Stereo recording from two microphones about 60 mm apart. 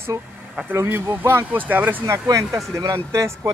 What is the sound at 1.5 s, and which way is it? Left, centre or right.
Speech, right.